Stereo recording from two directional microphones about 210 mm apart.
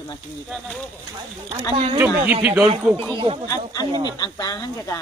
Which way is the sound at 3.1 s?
25° right (ahead or behind).